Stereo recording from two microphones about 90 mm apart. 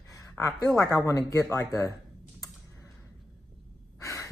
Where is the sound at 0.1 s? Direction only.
40° left (ahead or behind).